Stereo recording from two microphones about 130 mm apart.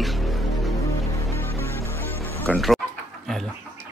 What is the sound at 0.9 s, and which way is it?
Music, 25° left (ahead or behind).